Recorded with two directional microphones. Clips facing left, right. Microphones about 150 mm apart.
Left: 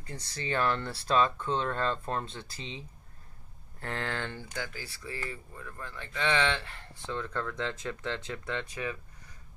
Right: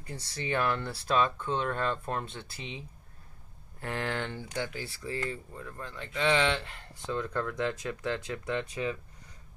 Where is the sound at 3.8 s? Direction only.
15° right (ahead or behind).